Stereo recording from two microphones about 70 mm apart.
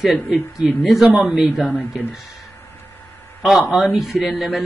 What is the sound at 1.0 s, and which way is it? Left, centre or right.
Speech, right.